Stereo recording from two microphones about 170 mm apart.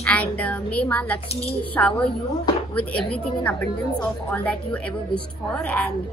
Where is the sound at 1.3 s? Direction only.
35° left (ahead or behind).